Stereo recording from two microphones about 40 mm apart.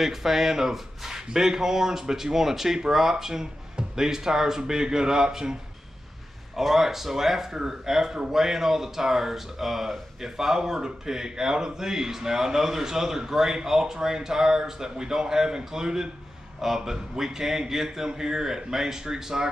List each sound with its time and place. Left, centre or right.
0.0 s speech: centre